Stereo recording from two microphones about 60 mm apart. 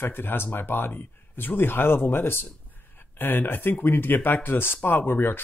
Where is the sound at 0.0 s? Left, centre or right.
Left.